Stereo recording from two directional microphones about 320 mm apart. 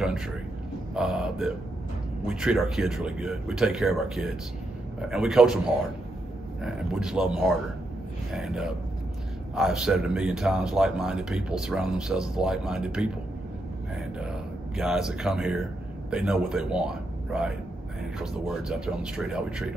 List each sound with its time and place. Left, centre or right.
0.9 s speech: centre
6.6 s speech: centre
14.2 s a man's voice: centre